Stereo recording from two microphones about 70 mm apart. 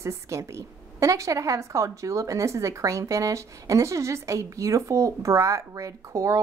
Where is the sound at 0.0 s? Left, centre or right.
Right.